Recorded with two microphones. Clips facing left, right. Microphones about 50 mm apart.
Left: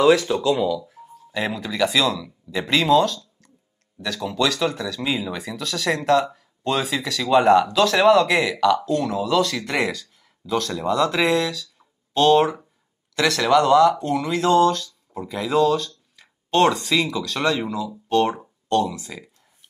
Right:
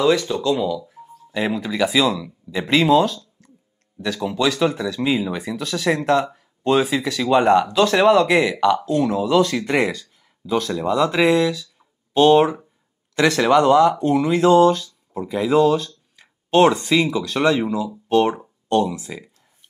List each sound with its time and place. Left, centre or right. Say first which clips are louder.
0.0 s speech: left 2 dB; centre
8.5 s speech: right 1 dB; centre